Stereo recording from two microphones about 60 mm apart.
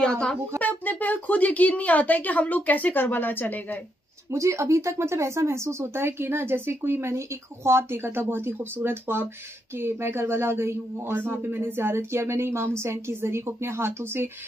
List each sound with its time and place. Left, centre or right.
0.0 s speech: centre
0.6 s speech: left
4.3 s speech: right